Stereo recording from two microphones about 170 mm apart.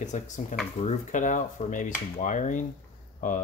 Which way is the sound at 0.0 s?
45° left (ahead or behind).